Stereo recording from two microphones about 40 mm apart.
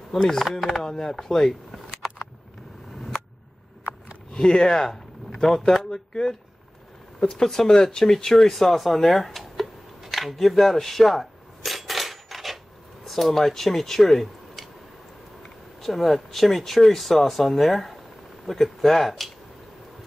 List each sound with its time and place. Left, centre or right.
0.2 s speech: centre
4.3 s speech: centre
7.2 s speech: centre
8.0 s a sound: centre
13.0 s speech: centre
15.8 s speech: centre